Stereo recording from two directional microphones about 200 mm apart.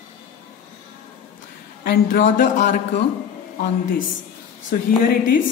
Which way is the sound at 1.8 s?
45° left (ahead or behind).